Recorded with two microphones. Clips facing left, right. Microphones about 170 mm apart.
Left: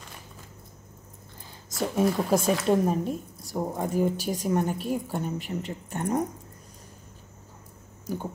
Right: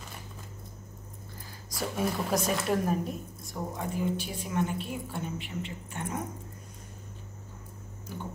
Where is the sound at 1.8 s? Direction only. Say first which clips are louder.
Left 6 dB; 25° left (ahead or behind); by 6.2 s 40° left (ahead or behind).